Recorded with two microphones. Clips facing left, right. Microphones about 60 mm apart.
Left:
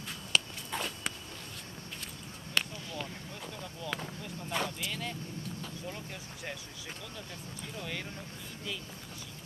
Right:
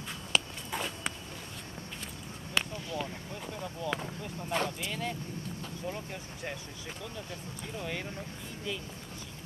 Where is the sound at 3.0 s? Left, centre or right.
Centre.